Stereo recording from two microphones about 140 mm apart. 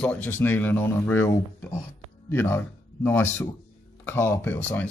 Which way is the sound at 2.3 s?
15° left (ahead or behind).